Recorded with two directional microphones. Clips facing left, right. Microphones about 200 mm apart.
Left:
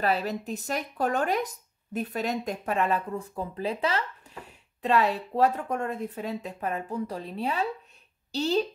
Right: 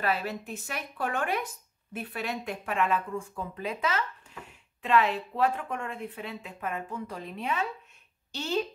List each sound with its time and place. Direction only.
0.0 s speech: 40° left (ahead or behind)